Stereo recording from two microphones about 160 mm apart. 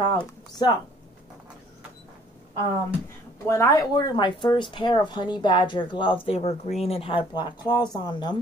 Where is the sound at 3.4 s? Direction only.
15° left (ahead or behind).